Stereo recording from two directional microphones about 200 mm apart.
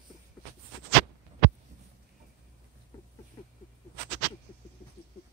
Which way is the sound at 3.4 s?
25° left (ahead or behind).